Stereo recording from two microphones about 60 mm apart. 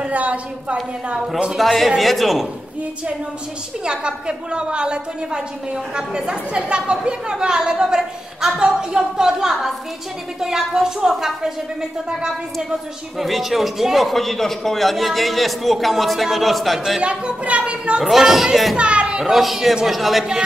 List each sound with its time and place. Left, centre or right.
0.0 s a woman's voice: right
1.1 s a woman's voice: centre
1.6 s a man's voice: centre
3.8 s a woman's voice: centre
13.2 s a man's voice: centre
17.0 s a woman's voice: centre
18.0 s a man's voice: centre
18.8 s a child's voice: centre
19.3 s a man's voice: centre